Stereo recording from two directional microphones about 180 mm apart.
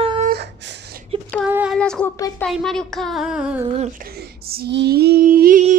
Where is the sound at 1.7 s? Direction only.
5° left (ahead or behind).